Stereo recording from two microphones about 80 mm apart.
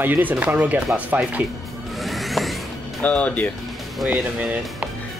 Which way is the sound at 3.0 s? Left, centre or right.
Centre.